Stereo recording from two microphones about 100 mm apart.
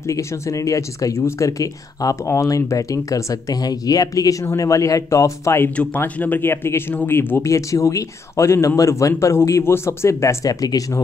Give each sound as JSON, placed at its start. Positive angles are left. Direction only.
{"t": 0.0, "sound": "speech", "side_deg": 35}
{"t": 5.9, "sound": "speech", "side_deg": 15}